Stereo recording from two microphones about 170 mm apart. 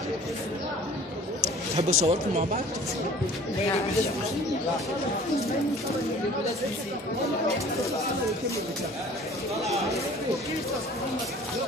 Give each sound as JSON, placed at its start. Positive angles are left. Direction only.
{"t": 1.8, "sound": "speech", "side_deg": -40}